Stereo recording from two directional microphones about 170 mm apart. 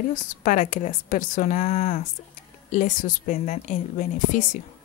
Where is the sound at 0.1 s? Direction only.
45° left (ahead or behind).